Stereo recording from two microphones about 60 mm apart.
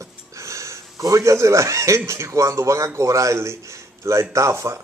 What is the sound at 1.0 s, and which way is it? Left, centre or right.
A man's voice, right.